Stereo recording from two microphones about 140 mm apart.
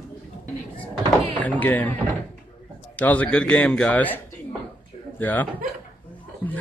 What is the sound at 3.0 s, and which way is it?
Speech, 10° left (ahead or behind).